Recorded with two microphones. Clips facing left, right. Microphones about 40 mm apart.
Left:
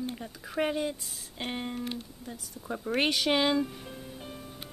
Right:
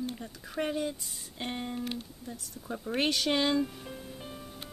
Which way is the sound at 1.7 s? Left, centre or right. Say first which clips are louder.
Even; centre.